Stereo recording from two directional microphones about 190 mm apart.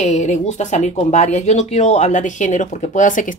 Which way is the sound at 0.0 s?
40° left (ahead or behind).